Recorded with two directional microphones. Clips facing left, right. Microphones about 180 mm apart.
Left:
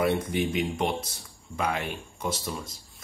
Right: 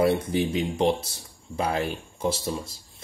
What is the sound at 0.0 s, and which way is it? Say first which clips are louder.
Speech: right 3 dB; 30° right (ahead or behind).